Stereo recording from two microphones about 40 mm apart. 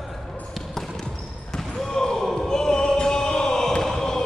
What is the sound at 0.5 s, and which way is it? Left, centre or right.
Basketball bounce, centre.